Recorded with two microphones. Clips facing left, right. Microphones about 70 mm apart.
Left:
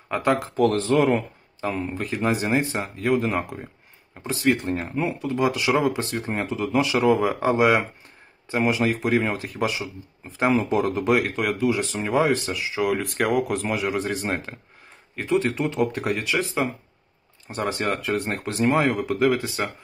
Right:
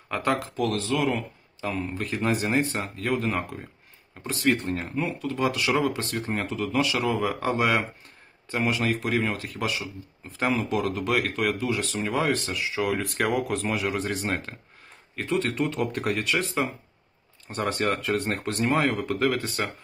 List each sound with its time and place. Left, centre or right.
0.1 s speech: centre
0.4 s speech: left
1.7 s speech: centre
11.2 s speech: centre